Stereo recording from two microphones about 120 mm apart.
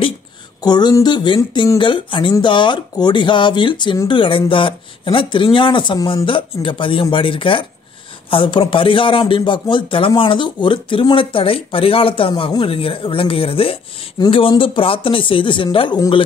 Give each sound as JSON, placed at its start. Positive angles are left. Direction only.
{"t": 0.6, "sound": "a sound", "side_deg": 35}
{"t": 1.0, "sound": "speech", "side_deg": 40}
{"t": 14.2, "sound": "speech", "side_deg": 35}
{"t": 14.6, "sound": "speech", "side_deg": 50}